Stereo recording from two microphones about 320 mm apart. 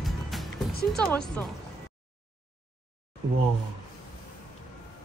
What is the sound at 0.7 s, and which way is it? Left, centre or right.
Music, left.